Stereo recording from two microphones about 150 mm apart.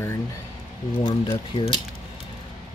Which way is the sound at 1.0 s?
35° left (ahead or behind).